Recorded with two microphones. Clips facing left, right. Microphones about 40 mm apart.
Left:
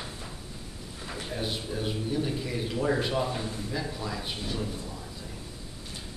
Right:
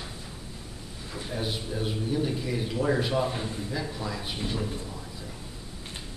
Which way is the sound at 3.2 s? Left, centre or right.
Centre.